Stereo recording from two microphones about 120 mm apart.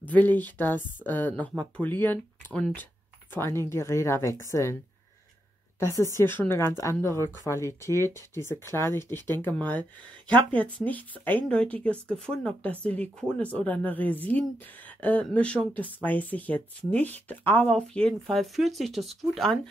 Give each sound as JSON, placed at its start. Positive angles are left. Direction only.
{"t": 0.0, "sound": "speech", "side_deg": 15}
{"t": 5.8, "sound": "speech", "side_deg": 25}